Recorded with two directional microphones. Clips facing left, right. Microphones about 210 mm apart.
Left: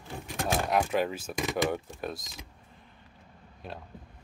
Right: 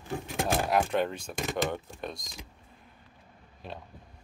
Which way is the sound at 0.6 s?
Centre (ahead or behind).